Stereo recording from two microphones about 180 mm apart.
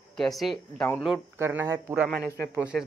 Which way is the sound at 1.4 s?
15° right (ahead or behind).